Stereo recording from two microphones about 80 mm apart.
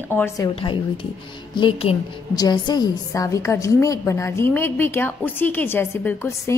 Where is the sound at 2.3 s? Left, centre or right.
Left.